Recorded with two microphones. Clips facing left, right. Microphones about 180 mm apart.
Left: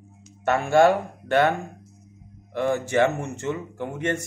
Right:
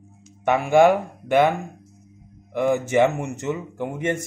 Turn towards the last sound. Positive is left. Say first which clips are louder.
# right 2 dB
turn(degrees=-15)  # may be behind; listen again after turning